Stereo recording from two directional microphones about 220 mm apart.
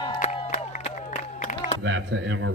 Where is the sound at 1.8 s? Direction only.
55° right (ahead or behind).